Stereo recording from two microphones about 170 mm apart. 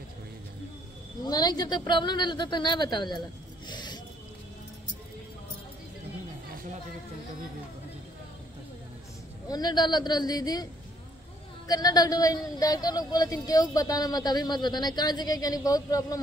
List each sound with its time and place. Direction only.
1.2 s speech: 25° left (ahead or behind)
3.2 s a sound: 25° left (ahead or behind)
9.5 s speech: 25° left (ahead or behind)